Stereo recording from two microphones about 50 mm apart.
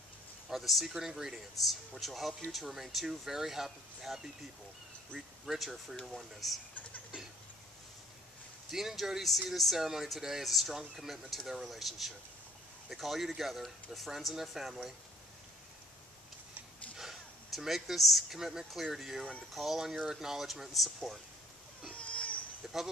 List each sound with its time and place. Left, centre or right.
0.5 s speech: centre
5.5 s speech: centre
8.7 s speech: centre
16.9 s speech: centre
21.9 s a sound: left